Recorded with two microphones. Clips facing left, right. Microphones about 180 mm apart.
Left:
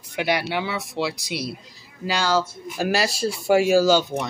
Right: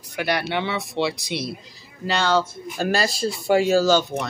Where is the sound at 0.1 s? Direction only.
15° left (ahead or behind).